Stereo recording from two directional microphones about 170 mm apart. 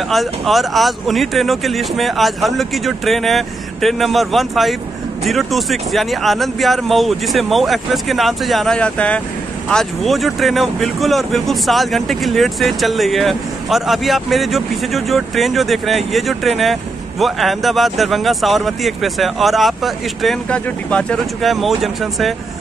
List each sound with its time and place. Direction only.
0.1 s speech: centre (ahead or behind)